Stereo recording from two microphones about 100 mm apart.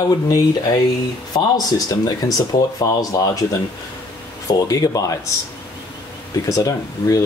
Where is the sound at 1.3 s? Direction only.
40° left (ahead or behind).